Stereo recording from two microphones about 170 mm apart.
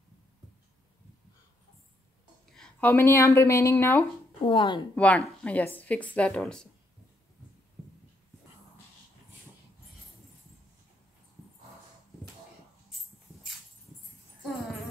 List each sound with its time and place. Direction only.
2.4 s speech: 5° left (ahead or behind)
4.5 s a woman's voice: 30° left (ahead or behind)
4.9 s a woman's voice: 5° left (ahead or behind)